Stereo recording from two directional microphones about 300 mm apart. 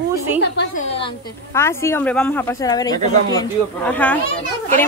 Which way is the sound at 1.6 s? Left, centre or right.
Centre.